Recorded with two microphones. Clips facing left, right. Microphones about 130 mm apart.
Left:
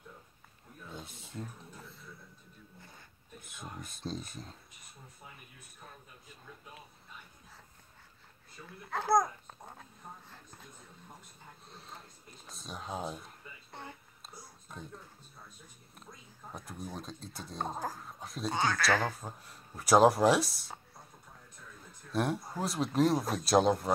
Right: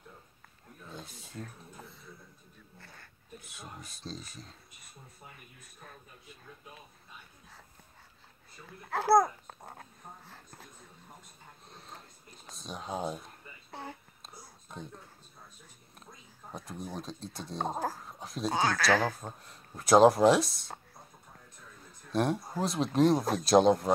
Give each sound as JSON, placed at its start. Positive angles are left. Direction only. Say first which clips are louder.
{"t": 0.9, "sound": "speech", "louder": "even", "side_deg": 25}
{"t": 3.3, "sound": "speech", "louder": "left 1 dB", "side_deg": 50}
{"t": 8.9, "sound": "speech", "louder": "right 4 dB", "side_deg": -5}
{"t": 12.4, "sound": "a sound", "louder": "right 2 dB", "side_deg": 0}
{"t": 16.5, "sound": "speech", "louder": "right 3 dB", "side_deg": 0}
{"t": 22.1, "sound": "speech", "louder": "right 3 dB", "side_deg": 0}